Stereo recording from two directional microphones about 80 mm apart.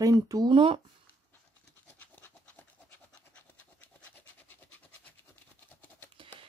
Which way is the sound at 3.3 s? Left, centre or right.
Left.